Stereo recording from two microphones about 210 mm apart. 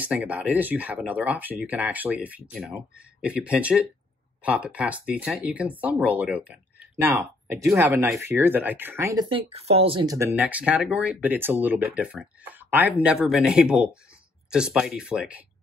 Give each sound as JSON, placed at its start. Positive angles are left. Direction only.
{"t": 0.0, "sound": "speech", "side_deg": -5}
{"t": 9.3, "sound": "speech", "side_deg": -30}